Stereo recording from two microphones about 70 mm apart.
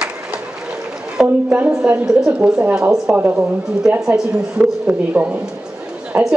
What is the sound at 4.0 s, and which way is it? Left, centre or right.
Speech, centre.